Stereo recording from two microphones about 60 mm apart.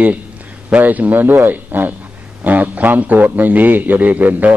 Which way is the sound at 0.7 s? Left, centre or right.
Right.